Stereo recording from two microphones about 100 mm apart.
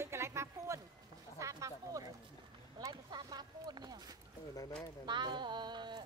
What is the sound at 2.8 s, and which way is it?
Speech, 45° right (ahead or behind).